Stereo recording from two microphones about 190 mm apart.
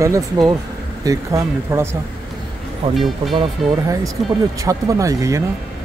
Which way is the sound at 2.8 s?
30° right (ahead or behind).